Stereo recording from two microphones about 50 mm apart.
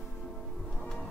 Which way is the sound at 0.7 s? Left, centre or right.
Centre.